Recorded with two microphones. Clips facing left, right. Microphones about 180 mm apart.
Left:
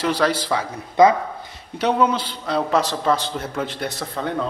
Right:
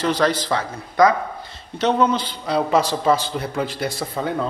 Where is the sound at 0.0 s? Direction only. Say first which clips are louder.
Right 1 dB; 10° left (ahead or behind).